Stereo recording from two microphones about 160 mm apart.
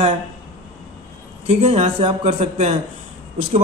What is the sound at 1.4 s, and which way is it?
Speech, 40° right (ahead or behind).